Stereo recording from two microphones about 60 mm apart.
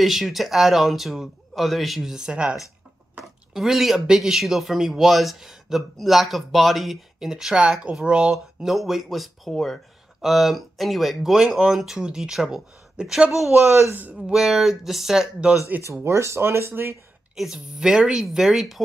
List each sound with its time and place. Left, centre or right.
0.0 s speech: centre
2.1 s a woman's voice: centre
3.5 s speech: centre
13.7 s speech: right
14.3 s speech: centre
15.8 s speech: right
17.4 s a woman's voice: centre